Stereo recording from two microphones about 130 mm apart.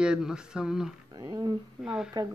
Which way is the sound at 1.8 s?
5° right (ahead or behind).